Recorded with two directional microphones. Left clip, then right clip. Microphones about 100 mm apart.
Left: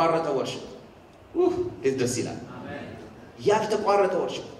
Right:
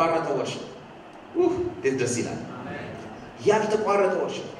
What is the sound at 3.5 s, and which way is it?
Speech, 20° left (ahead or behind).